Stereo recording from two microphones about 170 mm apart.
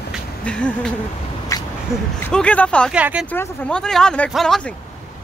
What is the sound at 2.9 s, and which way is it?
Speech, 5° right (ahead or behind).